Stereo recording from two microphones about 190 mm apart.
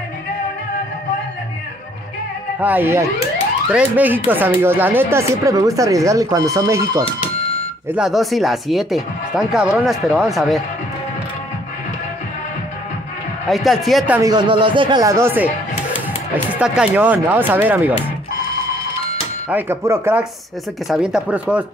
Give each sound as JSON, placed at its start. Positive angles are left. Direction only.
{"t": 2.6, "sound": "speech", "side_deg": -10}
{"t": 7.9, "sound": "speech", "side_deg": 0}
{"t": 13.5, "sound": "speech", "side_deg": 0}
{"t": 14.2, "sound": "speech", "side_deg": -25}
{"t": 16.5, "sound": "speech", "side_deg": -5}
{"t": 19.5, "sound": "speech", "side_deg": -15}